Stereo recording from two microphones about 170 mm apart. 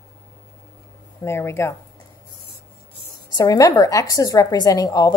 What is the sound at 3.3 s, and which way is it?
A woman's voice, 20° left (ahead or behind).